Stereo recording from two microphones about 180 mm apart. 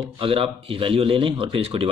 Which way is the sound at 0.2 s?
30° right (ahead or behind).